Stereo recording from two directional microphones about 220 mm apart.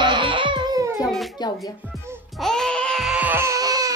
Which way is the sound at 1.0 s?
Centre (ahead or behind).